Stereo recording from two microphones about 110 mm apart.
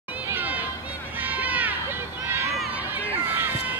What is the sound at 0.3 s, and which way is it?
Run, 15° right (ahead or behind).